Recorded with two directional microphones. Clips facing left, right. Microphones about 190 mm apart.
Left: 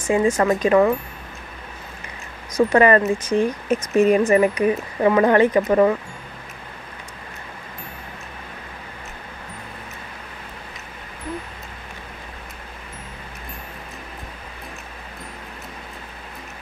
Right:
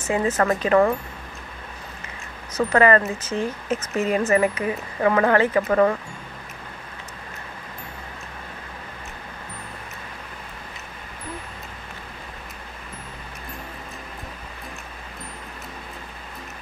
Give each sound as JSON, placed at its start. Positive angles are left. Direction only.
{"t": 0.0, "sound": "speech", "side_deg": 15}
{"t": 2.5, "sound": "speech", "side_deg": 20}